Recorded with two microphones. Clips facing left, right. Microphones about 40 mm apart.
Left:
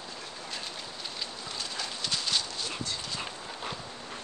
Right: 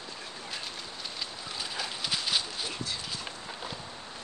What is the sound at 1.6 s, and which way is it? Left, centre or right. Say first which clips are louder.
Dog: right 1 dB; centre.